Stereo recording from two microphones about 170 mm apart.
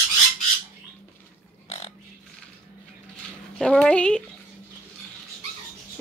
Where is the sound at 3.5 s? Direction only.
5° left (ahead or behind).